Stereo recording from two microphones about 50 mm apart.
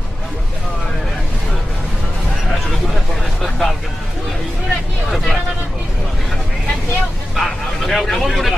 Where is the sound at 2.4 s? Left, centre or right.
Centre.